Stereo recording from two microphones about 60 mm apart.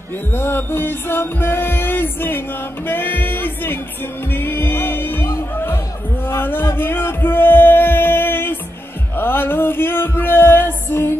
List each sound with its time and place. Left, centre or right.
0.3 s music: left